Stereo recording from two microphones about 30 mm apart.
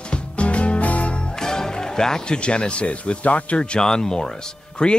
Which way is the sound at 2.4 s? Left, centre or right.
Left.